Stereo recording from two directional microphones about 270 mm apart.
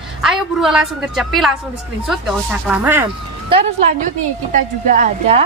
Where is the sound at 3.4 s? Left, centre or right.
Centre.